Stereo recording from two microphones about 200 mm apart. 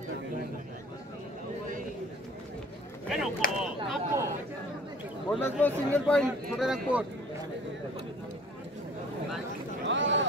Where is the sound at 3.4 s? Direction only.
45° left (ahead or behind).